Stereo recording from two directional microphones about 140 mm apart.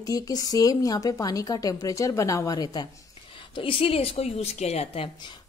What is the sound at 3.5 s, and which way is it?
A woman's voice, 40° left (ahead or behind).